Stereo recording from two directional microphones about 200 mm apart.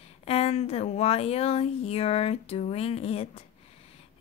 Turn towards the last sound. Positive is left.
turn(degrees=30)  # may be behind; listen again after turning